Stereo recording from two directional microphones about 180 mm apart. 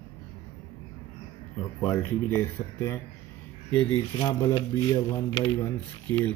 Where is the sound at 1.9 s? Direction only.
15° left (ahead or behind).